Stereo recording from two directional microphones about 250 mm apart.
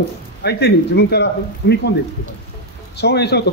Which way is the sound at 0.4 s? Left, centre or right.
Left.